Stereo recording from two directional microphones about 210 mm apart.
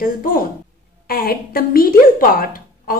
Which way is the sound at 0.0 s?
40° left (ahead or behind).